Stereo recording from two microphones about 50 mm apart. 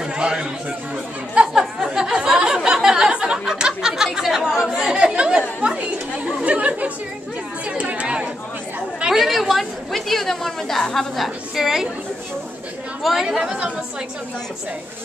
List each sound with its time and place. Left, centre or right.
0.0 s chatter: centre
1.3 s a sound: centre
4.6 s speech: centre
5.6 s chatter: right
7.9 s chatter: right
9.1 s a woman's voice: centre
11.1 s a woman's voice: centre
13.0 s a woman's voice: centre